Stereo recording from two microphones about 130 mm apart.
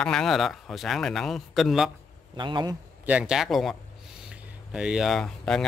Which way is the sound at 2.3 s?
35° right (ahead or behind).